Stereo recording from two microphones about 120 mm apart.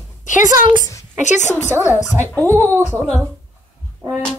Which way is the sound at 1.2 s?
80° left.